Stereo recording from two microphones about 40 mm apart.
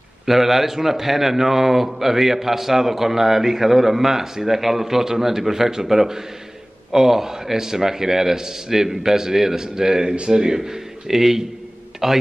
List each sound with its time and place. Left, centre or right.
0.3 s a man's voice: centre